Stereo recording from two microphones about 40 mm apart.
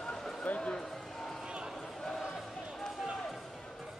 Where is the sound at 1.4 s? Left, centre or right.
Right.